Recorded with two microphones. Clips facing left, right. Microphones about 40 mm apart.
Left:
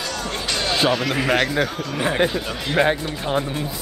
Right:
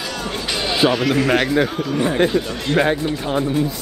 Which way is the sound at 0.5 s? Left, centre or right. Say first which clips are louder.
Right 2 dB; centre.